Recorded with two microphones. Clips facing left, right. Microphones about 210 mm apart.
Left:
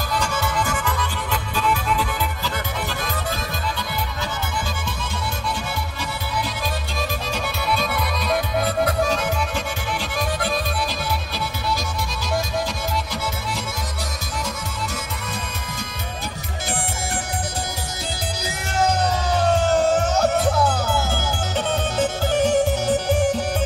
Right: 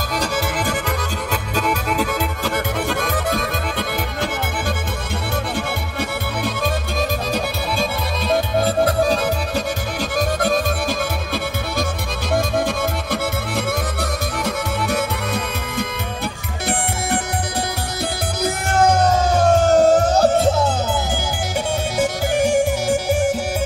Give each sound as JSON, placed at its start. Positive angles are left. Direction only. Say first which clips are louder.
{"t": 0.1, "sound": "music", "louder": "right 2 dB", "side_deg": -35}
{"t": 5.5, "sound": "music", "louder": "right 4 dB", "side_deg": -60}
{"t": 8.3, "sound": "music", "louder": "right 5 dB", "side_deg": -30}
{"t": 10.1, "sound": "music", "louder": "right 6 dB", "side_deg": -45}
{"t": 13.1, "sound": "music", "louder": "right 6 dB", "side_deg": -55}
{"t": 18.4, "sound": "music", "louder": "right 6 dB", "side_deg": -50}
{"t": 21.9, "sound": "music", "louder": "right 2 dB", "side_deg": -10}